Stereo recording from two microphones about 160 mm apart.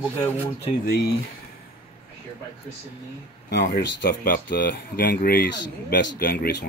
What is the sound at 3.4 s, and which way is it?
Speech, 90° left.